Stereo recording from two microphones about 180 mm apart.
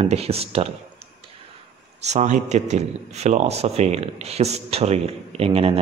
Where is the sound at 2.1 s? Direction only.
40° right (ahead or behind).